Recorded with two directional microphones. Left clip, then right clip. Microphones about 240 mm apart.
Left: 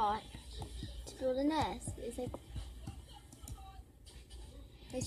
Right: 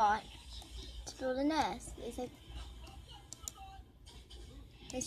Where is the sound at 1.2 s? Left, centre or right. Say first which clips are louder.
Even; centre.